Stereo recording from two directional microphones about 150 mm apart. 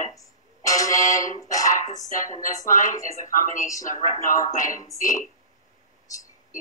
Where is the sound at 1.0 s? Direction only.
60° left (ahead or behind).